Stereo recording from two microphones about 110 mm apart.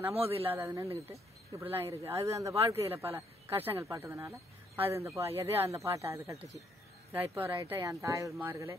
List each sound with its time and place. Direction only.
0.1 s speech: 65° right (ahead or behind)
0.4 s speech: 25° right (ahead or behind)
1.7 s speech: 60° right (ahead or behind)
2.0 s speech: 25° right (ahead or behind)
2.5 s speech: 65° right (ahead or behind)
2.9 s speech: 20° right (ahead or behind)